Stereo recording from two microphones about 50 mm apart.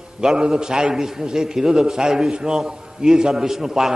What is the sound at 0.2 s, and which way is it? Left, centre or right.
A man's voice, centre.